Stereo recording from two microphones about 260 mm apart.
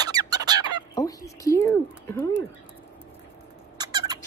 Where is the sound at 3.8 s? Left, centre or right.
Centre.